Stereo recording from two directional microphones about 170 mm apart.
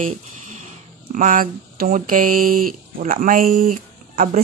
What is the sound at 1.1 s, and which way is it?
Speech, 50° right (ahead or behind).